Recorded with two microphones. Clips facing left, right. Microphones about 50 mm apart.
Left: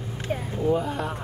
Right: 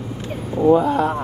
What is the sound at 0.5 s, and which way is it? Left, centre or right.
Speech, right.